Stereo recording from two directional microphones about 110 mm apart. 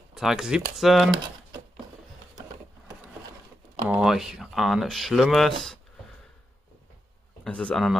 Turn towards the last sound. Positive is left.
turn(degrees=5)  # may be behind; listen again after turning